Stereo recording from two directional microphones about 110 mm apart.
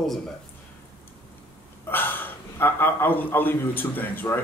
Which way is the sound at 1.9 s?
20° left (ahead or behind).